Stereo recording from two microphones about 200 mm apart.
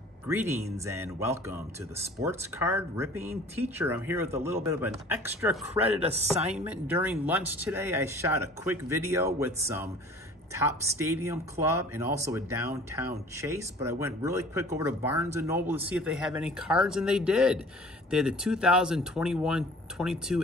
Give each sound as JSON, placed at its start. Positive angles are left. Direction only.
{"t": 0.3, "sound": "speech", "side_deg": -10}
{"t": 5.8, "sound": "speech", "side_deg": -30}
{"t": 6.5, "sound": "speech", "side_deg": -5}